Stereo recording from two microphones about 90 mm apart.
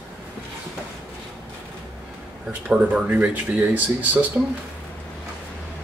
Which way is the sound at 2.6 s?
15° right (ahead or behind).